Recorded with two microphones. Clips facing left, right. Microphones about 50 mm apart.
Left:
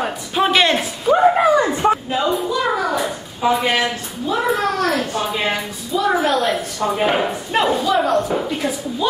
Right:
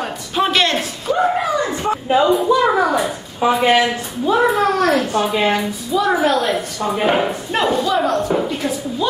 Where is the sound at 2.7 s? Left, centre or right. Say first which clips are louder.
Right 4 dB; right.